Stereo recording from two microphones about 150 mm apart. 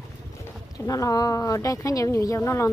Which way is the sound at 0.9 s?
25° left (ahead or behind).